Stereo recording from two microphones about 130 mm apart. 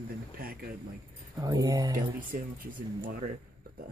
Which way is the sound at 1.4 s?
30° right (ahead or behind).